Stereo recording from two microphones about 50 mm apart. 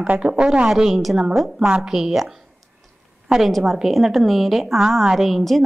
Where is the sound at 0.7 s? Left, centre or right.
Centre.